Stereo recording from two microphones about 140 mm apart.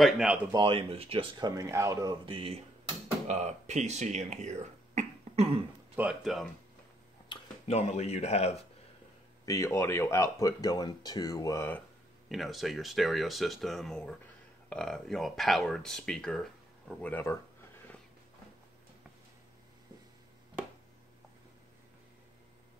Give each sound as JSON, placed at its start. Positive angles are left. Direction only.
{"t": 0.0, "sound": "speech", "side_deg": -5}
{"t": 0.5, "sound": "speech", "side_deg": -30}
{"t": 0.7, "sound": "speech", "side_deg": -45}
{"t": 1.5, "sound": "speech", "side_deg": -25}
{"t": 2.2, "sound": "speech", "side_deg": -40}
{"t": 3.3, "sound": "speech", "side_deg": -55}
{"t": 5.9, "sound": "speech", "side_deg": -5}
{"t": 7.6, "sound": "speech", "side_deg": 50}
{"t": 9.5, "sound": "speech", "side_deg": 20}
{"t": 12.3, "sound": "speech", "side_deg": 0}
{"t": 17.0, "sound": "speech", "side_deg": 15}